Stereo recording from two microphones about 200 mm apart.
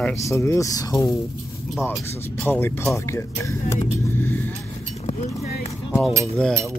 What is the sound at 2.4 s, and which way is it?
Speech, 10° left (ahead or behind).